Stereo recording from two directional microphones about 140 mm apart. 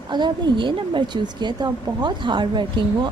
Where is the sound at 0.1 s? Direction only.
35° right (ahead or behind).